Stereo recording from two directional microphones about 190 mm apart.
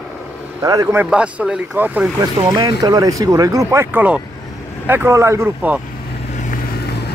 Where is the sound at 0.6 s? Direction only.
15° right (ahead or behind).